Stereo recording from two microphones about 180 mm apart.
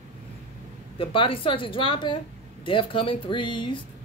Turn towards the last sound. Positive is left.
turn(degrees=25)  # may be behind; listen again after turning